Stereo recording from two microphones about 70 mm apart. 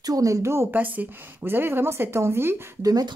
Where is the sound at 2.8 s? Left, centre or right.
Right.